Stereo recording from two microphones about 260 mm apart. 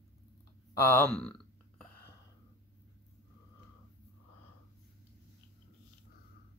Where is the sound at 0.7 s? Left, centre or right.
Centre.